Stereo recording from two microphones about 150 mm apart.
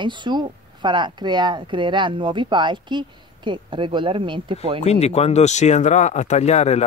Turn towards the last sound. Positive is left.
turn(degrees=50)  # may be behind; listen again after turning